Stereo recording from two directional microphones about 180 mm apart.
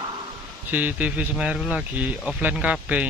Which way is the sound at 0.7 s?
10° right (ahead or behind).